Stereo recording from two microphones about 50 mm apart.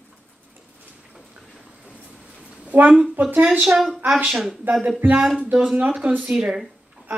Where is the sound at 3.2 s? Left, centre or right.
Right.